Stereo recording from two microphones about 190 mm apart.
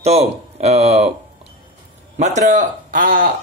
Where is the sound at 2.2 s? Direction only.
40° right (ahead or behind).